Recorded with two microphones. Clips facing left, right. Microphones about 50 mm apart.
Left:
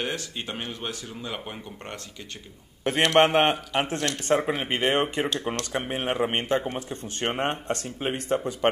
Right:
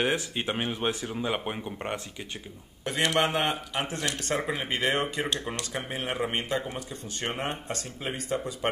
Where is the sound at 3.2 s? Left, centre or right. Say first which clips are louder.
Left 6 dB; left.